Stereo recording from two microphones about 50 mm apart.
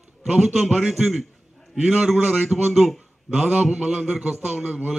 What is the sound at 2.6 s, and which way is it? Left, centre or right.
Speech, centre.